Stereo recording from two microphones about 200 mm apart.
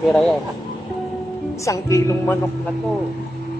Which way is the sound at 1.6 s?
15° left (ahead or behind).